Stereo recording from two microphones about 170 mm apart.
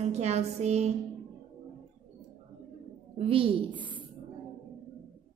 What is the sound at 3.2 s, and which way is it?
Speech, 35° right (ahead or behind).